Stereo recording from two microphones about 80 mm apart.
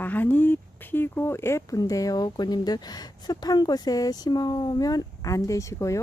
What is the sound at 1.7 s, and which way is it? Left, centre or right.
Speech, left.